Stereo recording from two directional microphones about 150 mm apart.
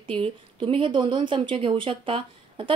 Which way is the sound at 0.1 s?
35° right (ahead or behind).